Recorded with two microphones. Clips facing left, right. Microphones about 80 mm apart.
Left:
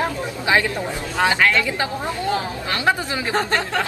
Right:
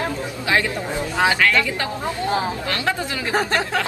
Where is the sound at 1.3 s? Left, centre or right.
Left.